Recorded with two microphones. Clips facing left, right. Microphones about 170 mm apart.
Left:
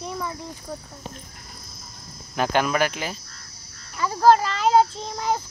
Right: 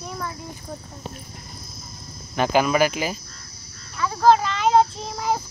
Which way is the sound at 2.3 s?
Centre (ahead or behind).